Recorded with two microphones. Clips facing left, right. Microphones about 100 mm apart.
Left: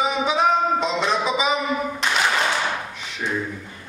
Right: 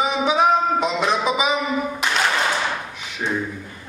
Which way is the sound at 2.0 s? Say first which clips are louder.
Left 1 dB; 5° right (ahead or behind).